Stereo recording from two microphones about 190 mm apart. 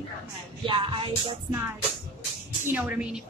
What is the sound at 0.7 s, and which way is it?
Music, 25° right (ahead or behind).